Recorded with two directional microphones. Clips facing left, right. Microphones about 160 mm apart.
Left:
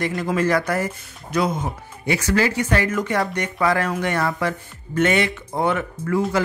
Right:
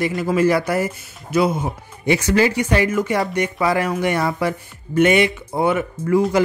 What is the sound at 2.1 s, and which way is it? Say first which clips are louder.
Speech: right 4 dB; 20° right (ahead or behind).